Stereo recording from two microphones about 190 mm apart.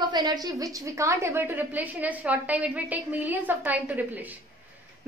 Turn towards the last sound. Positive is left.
turn(degrees=-10)  # may be behind; listen again after turning